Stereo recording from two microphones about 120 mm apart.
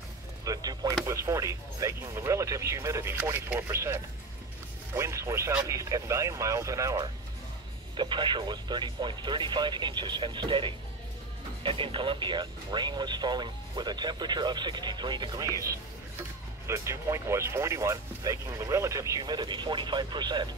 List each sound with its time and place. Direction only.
0.5 s a sound: 30° right (ahead or behind)
1.0 s speech: 25° right (ahead or behind)
7.9 s speech: 40° right (ahead or behind)
16.6 s speech: 25° right (ahead or behind)